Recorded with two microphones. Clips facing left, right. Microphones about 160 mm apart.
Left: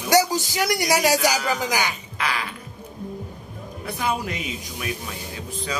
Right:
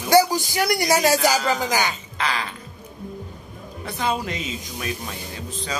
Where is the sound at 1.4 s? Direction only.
25° right (ahead or behind).